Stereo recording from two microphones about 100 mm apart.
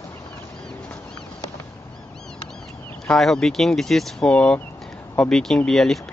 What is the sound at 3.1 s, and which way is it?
Speech, 5° left (ahead or behind).